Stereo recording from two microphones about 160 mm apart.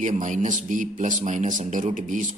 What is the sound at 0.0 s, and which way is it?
A man's voice, 50° right (ahead or behind).